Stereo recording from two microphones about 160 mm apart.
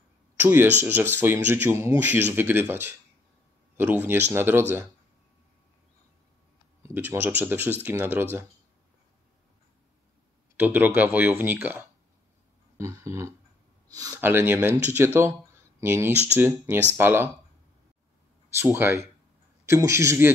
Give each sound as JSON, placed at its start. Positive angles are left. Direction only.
{"t": 0.4, "sound": "speech", "side_deg": -10}
{"t": 6.8, "sound": "speech", "side_deg": -15}
{"t": 10.5, "sound": "speech", "side_deg": -10}
{"t": 12.7, "sound": "a sound", "side_deg": -20}
{"t": 13.9, "sound": "speech", "side_deg": -20}
{"t": 18.6, "sound": "speech", "side_deg": -15}